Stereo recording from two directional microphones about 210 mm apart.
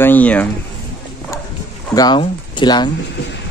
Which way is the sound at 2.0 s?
20° left (ahead or behind).